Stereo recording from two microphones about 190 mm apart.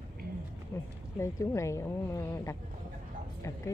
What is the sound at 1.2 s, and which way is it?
Speech, 15° left (ahead or behind).